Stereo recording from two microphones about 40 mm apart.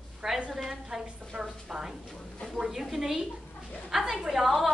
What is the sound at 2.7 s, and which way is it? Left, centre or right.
A woman's voice, centre.